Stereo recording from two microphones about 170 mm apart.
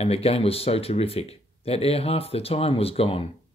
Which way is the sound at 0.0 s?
35° left (ahead or behind).